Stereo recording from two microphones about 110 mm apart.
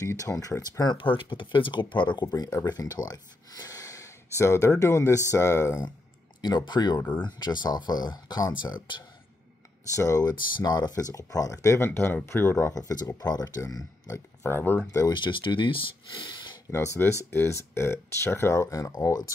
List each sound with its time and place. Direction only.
0.0 s speech: 30° left (ahead or behind)
0.9 s speech: 50° left (ahead or behind)
2.2 s speech: 35° left (ahead or behind)
6.4 s speech: 40° left (ahead or behind)
9.9 s speech: 30° left (ahead or behind)
14.9 s speech: 35° left (ahead or behind); by 16.5 s 50° left (ahead or behind)
16.7 s speech: 25° left (ahead or behind)